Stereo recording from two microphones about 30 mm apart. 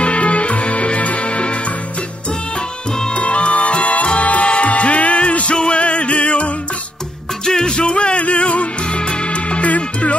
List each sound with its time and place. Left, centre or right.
0.0 s music: left
3.1 s music: left
7.4 s music: left